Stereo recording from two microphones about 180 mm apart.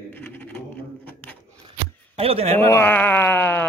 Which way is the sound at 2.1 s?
30° right (ahead or behind).